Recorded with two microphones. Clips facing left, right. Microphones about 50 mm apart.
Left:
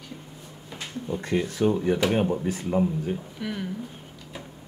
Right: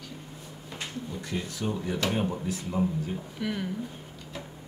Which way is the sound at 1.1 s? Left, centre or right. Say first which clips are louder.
Left 12 dB; left.